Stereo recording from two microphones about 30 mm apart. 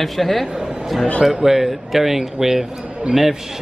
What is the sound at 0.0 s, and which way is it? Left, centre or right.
A man's voice, centre.